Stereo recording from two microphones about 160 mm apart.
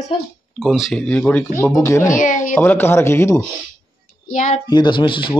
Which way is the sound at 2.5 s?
10° left (ahead or behind).